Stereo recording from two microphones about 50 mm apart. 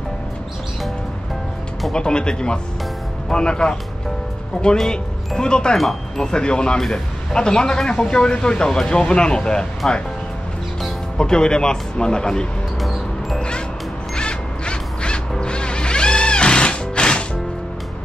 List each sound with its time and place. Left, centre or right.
1.9 s speech: centre
4.7 s speech: centre
11.1 s speech: centre
12.8 s music: centre
13.4 s music: centre